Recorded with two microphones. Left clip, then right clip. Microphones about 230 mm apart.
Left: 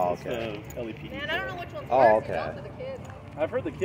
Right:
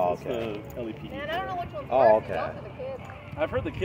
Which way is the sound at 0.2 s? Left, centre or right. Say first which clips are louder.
Right 1 dB; right.